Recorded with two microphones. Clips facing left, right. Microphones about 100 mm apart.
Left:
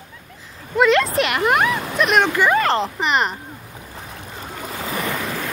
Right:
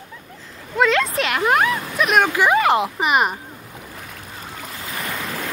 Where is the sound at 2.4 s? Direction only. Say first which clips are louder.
Right 1 dB; 15° right (ahead or behind).